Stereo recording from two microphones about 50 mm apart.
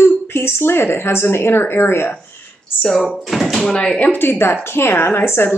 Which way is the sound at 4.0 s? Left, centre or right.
Left.